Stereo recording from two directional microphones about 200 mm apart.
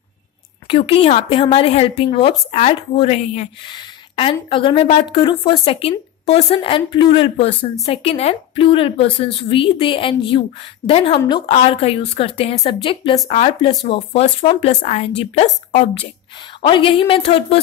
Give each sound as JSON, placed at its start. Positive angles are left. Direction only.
{"t": 0.7, "sound": "a woman's voice", "side_deg": 25}
{"t": 11.4, "sound": "a woman's voice", "side_deg": 30}